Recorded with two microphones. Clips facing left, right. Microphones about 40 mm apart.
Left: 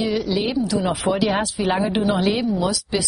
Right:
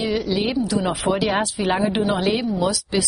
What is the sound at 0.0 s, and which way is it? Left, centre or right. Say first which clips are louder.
A woman's voice: even; centre.